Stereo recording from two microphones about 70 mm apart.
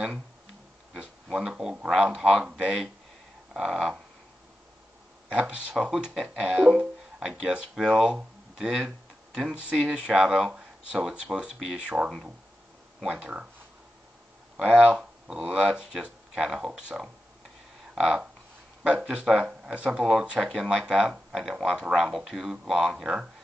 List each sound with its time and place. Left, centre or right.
0.9 s speech: centre
5.3 s speech: centre
6.8 s music: centre
7.7 s speech: centre
13.1 s speech: centre
14.6 s speech: right
15.0 s speech: centre
18.9 s speech: centre